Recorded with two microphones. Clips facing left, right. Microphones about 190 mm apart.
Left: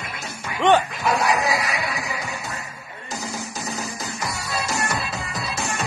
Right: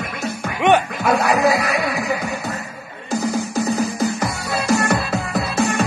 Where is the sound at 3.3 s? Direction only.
55° right (ahead or behind).